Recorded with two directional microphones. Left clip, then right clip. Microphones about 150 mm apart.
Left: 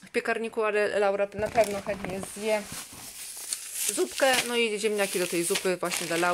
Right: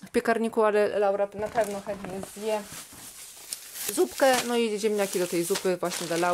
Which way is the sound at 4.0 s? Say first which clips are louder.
Right 2 dB; 20° right (ahead or behind).